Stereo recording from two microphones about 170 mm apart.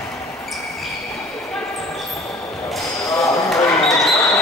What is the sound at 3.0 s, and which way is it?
Basketball bounce, 20° left (ahead or behind).